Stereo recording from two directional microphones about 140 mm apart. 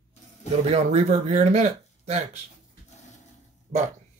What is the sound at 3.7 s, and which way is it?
Speech, 45° right (ahead or behind).